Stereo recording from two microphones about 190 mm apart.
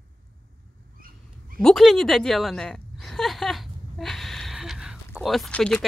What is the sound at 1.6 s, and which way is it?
A woman's voice, centre (ahead or behind).